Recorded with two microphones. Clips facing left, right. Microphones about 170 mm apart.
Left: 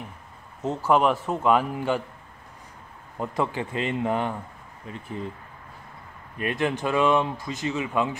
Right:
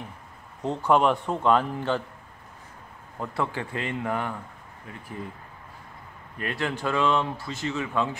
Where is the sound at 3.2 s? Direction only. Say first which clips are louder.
Left 3 dB; 20° left (ahead or behind).